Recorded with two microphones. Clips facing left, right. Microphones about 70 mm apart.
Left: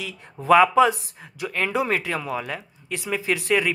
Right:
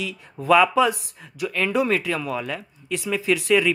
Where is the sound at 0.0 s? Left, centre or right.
Left.